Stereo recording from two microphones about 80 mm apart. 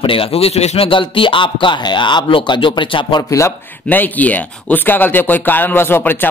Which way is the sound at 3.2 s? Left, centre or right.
Left.